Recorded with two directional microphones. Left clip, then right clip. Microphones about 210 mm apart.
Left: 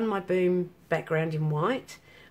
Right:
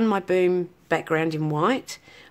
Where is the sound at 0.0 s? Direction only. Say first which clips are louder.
Right 5 dB; 50° right (ahead or behind).